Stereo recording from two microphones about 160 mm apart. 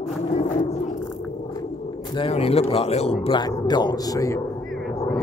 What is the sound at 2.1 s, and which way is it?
Speech, 35° left (ahead or behind).